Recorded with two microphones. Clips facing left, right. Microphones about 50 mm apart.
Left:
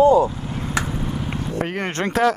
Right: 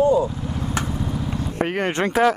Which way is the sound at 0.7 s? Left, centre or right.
Left.